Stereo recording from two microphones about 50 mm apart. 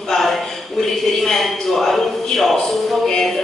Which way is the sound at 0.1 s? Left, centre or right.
Centre.